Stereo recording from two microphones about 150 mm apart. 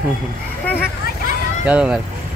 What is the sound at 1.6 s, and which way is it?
Speech, 5° right (ahead or behind).